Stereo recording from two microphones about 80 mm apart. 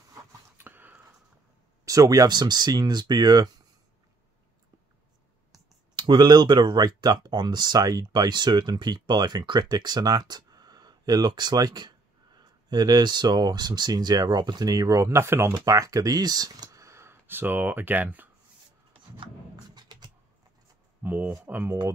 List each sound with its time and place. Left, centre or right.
0.6 s a sound: right
1.9 s speech: right
5.9 s speech: right
15.0 s speech: right
15.6 s speech: right
16.8 s speech: right
19.7 s beatboxing: right
21.0 s speech: right